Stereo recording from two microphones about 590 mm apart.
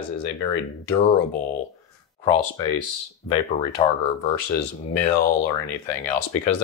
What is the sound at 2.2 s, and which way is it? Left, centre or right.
Speech, left.